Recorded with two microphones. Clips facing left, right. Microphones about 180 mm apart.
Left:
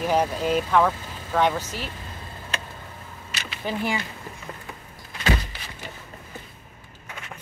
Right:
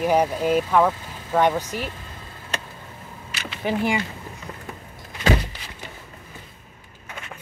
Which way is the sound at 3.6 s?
15° right (ahead or behind).